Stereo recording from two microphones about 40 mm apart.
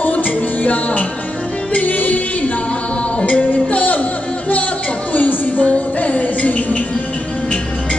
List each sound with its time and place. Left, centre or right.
0.0 s music: left
3.2 s music: left
3.4 s music: left
5.1 s music: left